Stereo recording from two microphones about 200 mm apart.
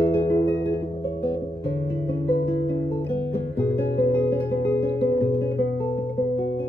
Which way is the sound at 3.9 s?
55° left (ahead or behind).